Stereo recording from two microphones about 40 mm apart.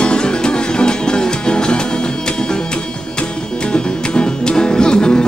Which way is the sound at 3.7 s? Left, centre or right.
Left.